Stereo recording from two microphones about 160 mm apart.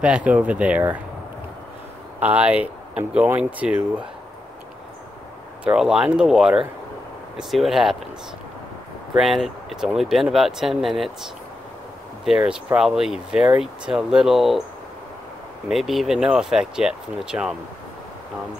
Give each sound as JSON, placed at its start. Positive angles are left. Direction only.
{"t": 0.0, "sound": "speech", "side_deg": -5}
{"t": 2.1, "sound": "speech", "side_deg": -10}
{"t": 5.6, "sound": "speech", "side_deg": -5}
{"t": 9.1, "sound": "speech", "side_deg": 0}
{"t": 12.3, "sound": "speech", "side_deg": -5}
{"t": 15.7, "sound": "speech", "side_deg": 0}